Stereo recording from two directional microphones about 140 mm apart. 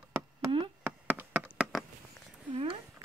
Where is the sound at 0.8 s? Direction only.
15° right (ahead or behind).